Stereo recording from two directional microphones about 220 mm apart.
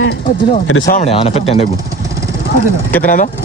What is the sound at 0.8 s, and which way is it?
Speech, 30° left (ahead or behind).